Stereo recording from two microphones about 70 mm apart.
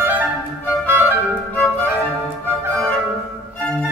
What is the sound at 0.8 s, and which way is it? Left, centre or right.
Music, right.